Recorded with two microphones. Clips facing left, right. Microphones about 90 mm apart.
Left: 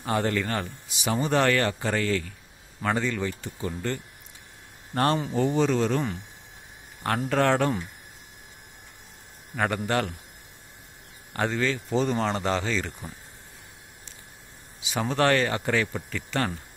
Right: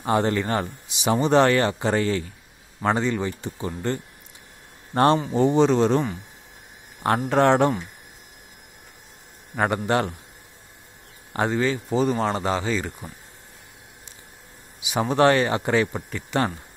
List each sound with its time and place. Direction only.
0.0 s speech: 25° right (ahead or behind)
7.2 s speech: 25° right (ahead or behind)
9.8 s speech: 25° right (ahead or behind)
11.3 s speech: 20° right (ahead or behind)
14.8 s speech: 15° right (ahead or behind)